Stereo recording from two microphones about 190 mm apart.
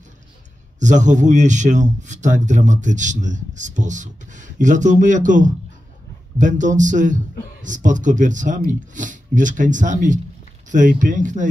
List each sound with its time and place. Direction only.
0.7 s a man's voice: 40° right (ahead or behind)